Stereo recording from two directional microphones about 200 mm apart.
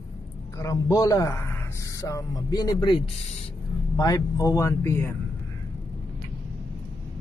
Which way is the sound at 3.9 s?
15° left (ahead or behind).